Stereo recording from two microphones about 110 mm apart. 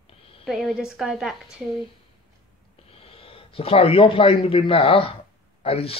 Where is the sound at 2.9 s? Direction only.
55° left (ahead or behind).